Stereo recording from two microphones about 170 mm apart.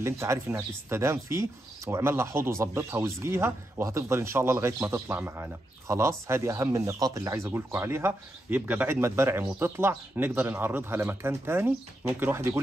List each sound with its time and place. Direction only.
0.0 s speech: 15° right (ahead or behind)